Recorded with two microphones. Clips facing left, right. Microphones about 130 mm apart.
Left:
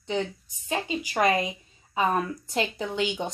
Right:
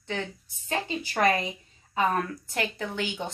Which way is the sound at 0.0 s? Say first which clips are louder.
Left 5 dB; 20° left (ahead or behind).